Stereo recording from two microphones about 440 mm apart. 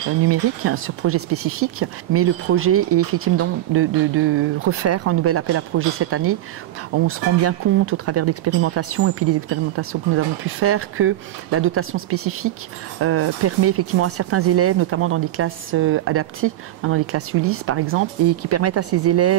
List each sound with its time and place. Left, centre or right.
0.3 s speech: right